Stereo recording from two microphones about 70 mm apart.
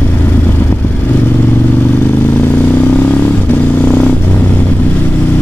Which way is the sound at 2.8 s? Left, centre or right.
Centre.